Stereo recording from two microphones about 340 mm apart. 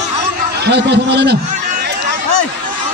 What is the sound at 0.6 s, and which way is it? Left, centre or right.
Speech, right.